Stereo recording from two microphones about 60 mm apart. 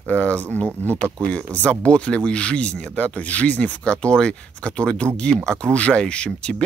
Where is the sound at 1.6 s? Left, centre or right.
Centre.